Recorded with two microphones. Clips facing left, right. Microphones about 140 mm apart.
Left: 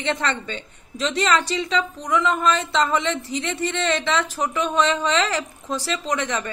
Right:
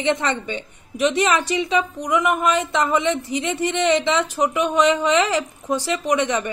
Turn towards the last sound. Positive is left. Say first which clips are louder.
# right 5 dB
turn(degrees=-15)  # may be behind; listen again after turning